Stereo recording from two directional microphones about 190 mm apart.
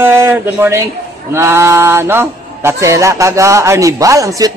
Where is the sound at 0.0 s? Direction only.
10° right (ahead or behind).